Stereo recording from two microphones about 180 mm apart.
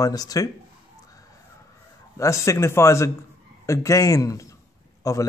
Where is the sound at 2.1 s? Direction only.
15° left (ahead or behind).